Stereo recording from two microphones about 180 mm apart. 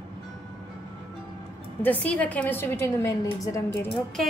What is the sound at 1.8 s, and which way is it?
A woman's voice, 10° left (ahead or behind).